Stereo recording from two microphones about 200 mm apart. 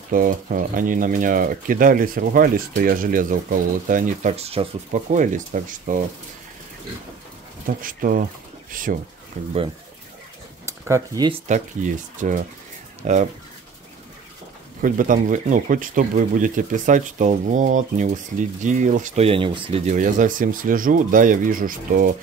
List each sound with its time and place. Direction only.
0.1 s speech: 45° right (ahead or behind)
7.6 s speech: 45° right (ahead or behind)
10.6 s speech: 15° right (ahead or behind)
11.4 s speech: 40° right (ahead or behind)
14.8 s speech: 40° right (ahead or behind)